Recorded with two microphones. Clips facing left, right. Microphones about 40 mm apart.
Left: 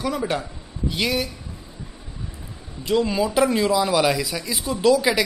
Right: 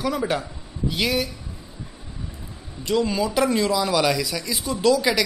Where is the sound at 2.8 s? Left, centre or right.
Centre.